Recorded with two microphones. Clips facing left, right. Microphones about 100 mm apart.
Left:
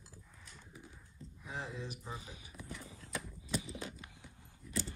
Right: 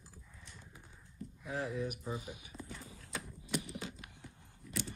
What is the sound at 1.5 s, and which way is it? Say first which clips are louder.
Speech: right 6 dB; 25° left (ahead or behind).